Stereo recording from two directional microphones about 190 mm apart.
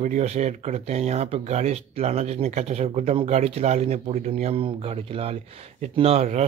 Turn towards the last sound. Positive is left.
turn(degrees=-35)  # may be behind; listen again after turning